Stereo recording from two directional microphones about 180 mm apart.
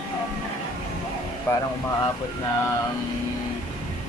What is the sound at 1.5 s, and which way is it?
Mantra, 15° left (ahead or behind).